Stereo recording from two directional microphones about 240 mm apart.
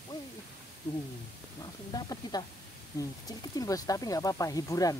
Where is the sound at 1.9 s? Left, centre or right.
Centre.